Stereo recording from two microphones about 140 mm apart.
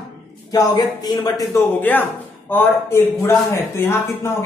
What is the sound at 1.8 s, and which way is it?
A man's voice, 15° left (ahead or behind).